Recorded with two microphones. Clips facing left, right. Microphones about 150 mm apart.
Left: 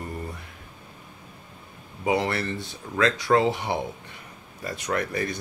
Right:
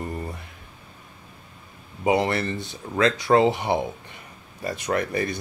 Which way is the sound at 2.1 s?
20° right (ahead or behind).